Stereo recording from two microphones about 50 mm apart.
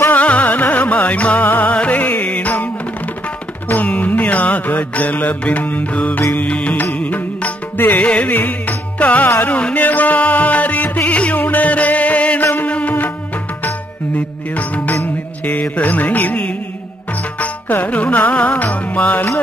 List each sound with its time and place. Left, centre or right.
0.1 s music: left
3.6 s music: left
11.3 s music: left
14.1 s music: left
17.4 s music: left